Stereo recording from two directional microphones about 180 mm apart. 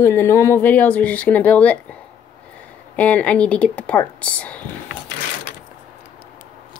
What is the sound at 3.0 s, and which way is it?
Speech, 10° left (ahead or behind).